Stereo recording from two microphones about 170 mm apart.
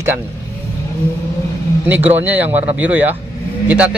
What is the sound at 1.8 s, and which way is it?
Speech, 10° right (ahead or behind).